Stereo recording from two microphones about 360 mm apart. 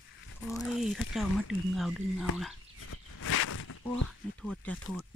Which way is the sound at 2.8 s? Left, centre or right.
Left.